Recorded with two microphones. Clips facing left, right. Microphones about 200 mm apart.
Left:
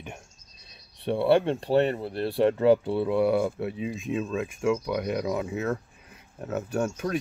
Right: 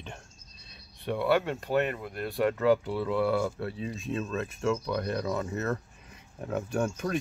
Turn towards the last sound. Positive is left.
turn(degrees=5)  # may be behind; listen again after turning